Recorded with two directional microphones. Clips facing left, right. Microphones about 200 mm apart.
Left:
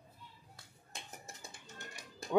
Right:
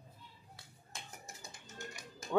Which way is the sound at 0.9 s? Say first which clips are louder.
Left 1 dB; 25° left (ahead or behind).